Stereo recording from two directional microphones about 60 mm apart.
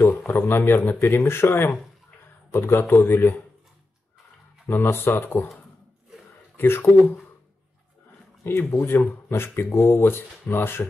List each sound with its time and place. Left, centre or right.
0.3 s speech: left
4.6 s speech: left
6.5 s speech: left
8.5 s speech: left